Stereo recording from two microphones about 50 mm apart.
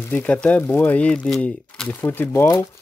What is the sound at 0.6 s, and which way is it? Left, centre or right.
Speech, left.